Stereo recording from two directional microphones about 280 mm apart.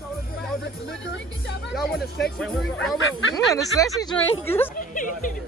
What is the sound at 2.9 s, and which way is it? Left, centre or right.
Speech, left.